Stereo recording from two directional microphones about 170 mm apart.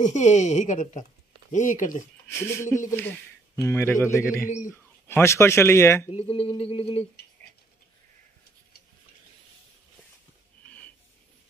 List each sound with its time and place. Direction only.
0.0 s a woman's voice: 45° left (ahead or behind)
2.2 s a man's voice: 15° left (ahead or behind)
6.1 s a sound: 35° left (ahead or behind)